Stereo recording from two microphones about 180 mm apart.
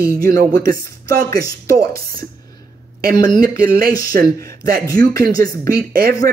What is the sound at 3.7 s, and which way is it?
Speech, 55° right (ahead or behind).